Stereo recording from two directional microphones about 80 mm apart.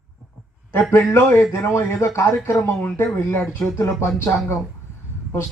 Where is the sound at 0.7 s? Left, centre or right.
Left.